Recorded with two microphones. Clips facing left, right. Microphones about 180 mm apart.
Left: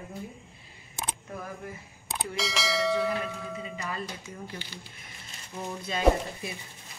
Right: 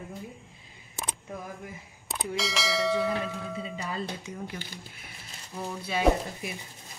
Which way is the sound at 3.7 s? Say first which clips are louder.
Right 2 dB; 25° right (ahead or behind).